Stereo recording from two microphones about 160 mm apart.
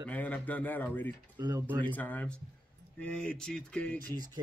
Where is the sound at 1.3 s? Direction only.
25° right (ahead or behind).